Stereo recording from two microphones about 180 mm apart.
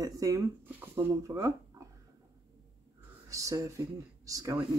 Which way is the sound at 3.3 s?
20° right (ahead or behind).